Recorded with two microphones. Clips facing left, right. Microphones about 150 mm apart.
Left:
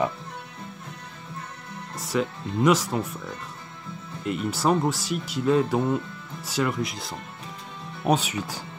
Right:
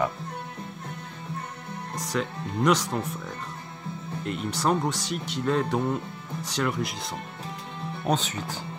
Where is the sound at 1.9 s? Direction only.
5° left (ahead or behind).